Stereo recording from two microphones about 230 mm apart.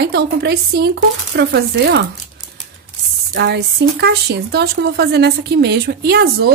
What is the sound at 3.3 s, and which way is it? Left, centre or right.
Speech, right.